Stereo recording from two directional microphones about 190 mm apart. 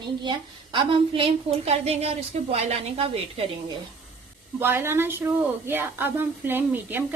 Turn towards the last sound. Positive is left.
turn(degrees=-10)  # may be behind; listen again after turning